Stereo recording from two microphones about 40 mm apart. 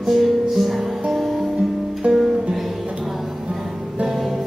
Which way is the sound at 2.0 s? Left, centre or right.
Right.